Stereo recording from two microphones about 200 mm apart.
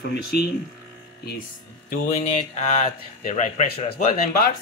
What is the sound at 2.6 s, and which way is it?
Speech, 35° left (ahead or behind).